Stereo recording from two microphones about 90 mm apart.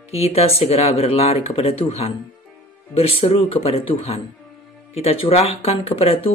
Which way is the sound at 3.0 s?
90° left.